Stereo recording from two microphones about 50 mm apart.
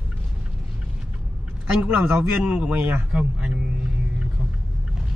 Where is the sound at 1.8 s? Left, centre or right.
Right.